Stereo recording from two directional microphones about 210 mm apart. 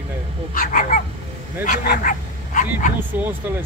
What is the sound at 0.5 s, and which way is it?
Speech, 40° left (ahead or behind).